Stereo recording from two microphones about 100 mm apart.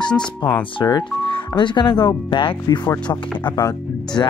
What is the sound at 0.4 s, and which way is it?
Speech, 50° left (ahead or behind).